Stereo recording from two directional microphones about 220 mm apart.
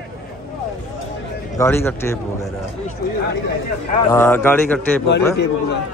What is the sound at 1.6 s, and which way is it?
Speech, 10° left (ahead or behind).